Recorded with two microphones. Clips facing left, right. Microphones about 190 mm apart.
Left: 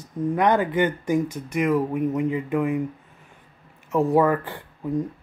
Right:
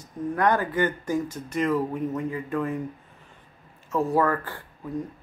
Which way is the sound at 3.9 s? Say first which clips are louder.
Left 4 dB; 15° left (ahead or behind).